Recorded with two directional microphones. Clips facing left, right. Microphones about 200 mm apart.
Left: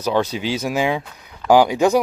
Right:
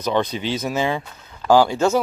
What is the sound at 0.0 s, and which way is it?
Speech, 10° left (ahead or behind).